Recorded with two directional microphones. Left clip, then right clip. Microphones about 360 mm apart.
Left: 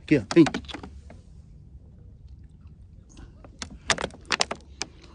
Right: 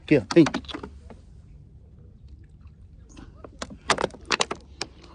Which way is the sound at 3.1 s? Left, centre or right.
Centre.